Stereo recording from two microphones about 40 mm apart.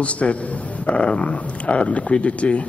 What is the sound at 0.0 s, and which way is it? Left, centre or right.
Speech, left.